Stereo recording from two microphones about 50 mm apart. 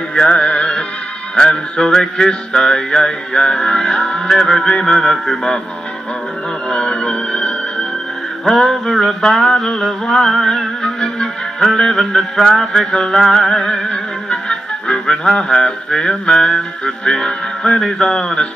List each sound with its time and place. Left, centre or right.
0.1 s music: left
1.3 s music: centre
4.3 s music: centre
6.7 s music: centre